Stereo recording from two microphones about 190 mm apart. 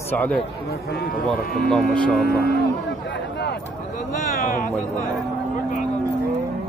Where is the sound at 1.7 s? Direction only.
5° left (ahead or behind).